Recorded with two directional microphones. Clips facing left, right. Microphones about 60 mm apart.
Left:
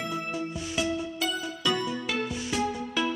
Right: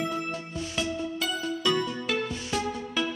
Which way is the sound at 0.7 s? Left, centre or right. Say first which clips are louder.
Left 1 dB; centre.